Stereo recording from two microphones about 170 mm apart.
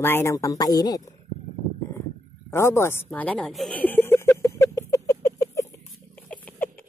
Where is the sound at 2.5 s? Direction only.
15° left (ahead or behind).